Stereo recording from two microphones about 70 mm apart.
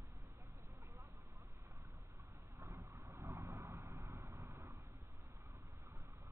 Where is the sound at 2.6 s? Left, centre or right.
Right.